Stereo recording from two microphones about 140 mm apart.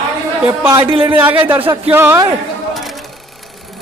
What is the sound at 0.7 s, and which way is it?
Speech, 35° right (ahead or behind).